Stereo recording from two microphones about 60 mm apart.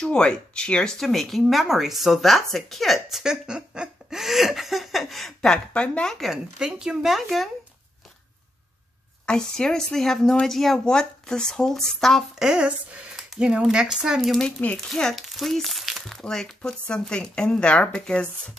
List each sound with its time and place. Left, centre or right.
0.0 s speech: centre
1.0 s a woman's voice: centre
5.7 s speech: centre
6.1 s a woman's voice: centre
9.2 s speech: centre
12.4 s a woman's voice: centre
14.9 s a woman's voice: centre